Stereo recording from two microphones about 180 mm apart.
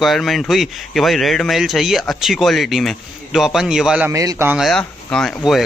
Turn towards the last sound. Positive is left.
turn(degrees=0)  # may be behind; listen again after turning